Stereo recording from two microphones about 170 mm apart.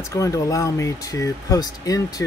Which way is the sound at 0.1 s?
20° left (ahead or behind).